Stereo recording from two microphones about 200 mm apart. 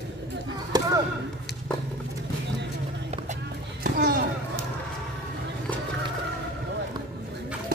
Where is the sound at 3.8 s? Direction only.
50° right (ahead or behind).